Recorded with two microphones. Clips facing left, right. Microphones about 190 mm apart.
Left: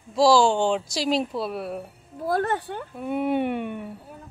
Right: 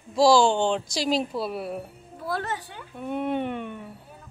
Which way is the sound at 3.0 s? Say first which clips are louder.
Left 3 dB; 5° left (ahead or behind).